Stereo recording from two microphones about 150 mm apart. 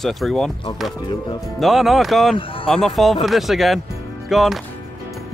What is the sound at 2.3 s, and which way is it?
Speech, 35° left (ahead or behind).